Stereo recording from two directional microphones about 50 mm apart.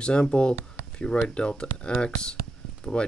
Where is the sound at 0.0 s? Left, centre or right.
Centre.